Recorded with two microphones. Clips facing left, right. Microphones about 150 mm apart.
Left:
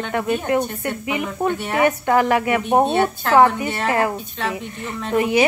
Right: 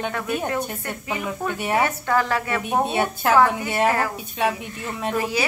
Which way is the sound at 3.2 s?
10° right (ahead or behind).